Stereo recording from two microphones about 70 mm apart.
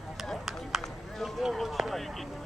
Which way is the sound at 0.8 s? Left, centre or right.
Centre.